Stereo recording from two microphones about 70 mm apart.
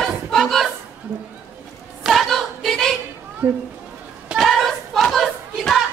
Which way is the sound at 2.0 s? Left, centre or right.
Centre.